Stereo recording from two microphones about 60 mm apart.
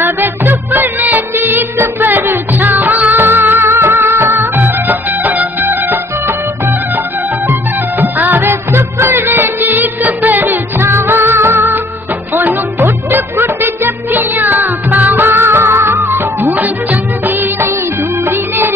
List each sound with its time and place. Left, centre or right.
0.0 s music: right
8.0 s music: right